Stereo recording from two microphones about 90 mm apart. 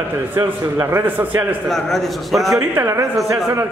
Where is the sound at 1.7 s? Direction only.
5° left (ahead or behind).